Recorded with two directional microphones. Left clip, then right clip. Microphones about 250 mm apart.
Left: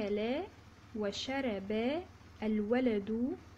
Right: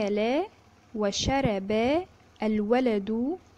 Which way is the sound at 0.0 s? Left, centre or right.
Right.